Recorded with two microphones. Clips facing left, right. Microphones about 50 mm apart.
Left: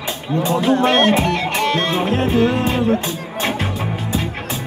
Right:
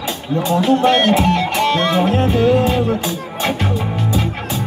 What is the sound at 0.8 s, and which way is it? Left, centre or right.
Music, left.